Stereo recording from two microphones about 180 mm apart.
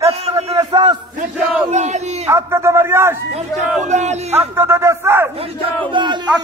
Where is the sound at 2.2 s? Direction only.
15° right (ahead or behind).